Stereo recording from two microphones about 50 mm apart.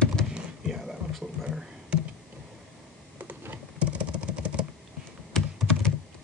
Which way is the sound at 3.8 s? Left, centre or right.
Right.